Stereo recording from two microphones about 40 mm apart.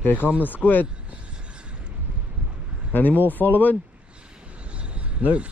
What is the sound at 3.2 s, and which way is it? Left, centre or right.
Speech, left.